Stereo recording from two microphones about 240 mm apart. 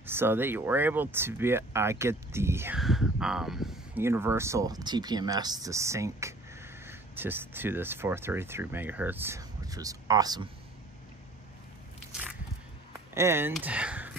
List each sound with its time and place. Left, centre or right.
0.0 s speech: centre
13.1 s speech: centre